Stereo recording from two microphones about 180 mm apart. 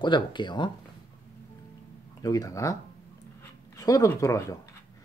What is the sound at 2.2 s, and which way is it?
Speech, 20° left (ahead or behind).